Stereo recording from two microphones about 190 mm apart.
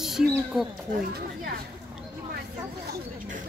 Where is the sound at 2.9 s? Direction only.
45° right (ahead or behind).